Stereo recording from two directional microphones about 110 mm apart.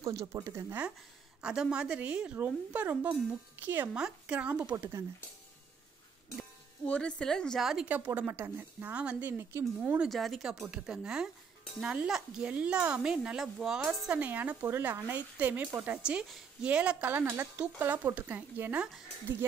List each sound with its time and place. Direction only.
0.0 s speech: 30° right (ahead or behind)
1.4 s speech: 5° right (ahead or behind)
6.9 s a woman's voice: 10° left (ahead or behind); by 9.3 s 15° right (ahead or behind)
9.4 s speech: 25° right (ahead or behind)
9.8 s speech: 10° right (ahead or behind)
10.0 s speech: centre (ahead or behind); by 18.9 s 15° right (ahead or behind)